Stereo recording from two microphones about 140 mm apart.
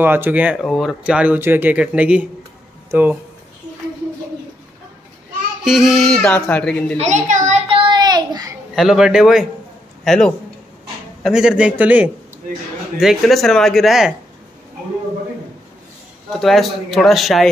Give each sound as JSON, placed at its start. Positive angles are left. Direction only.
{"t": 0.0, "sound": "speech", "side_deg": -15}
{"t": 5.6, "sound": "a man's voice", "side_deg": -5}
{"t": 7.0, "sound": "a child's voice", "side_deg": -55}
{"t": 7.7, "sound": "a sound", "side_deg": -35}
{"t": 8.7, "sound": "a man's voice", "side_deg": -5}
{"t": 16.3, "sound": "a man's voice", "side_deg": 0}